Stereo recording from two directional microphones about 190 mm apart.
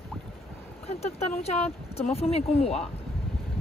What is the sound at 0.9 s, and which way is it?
Speech, 35° left (ahead or behind).